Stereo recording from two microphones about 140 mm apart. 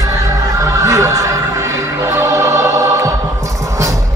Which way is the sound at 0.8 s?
20° right (ahead or behind).